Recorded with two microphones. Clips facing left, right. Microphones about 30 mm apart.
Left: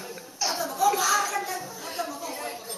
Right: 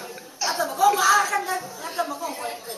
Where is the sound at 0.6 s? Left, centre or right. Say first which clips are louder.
Right 5 dB; right.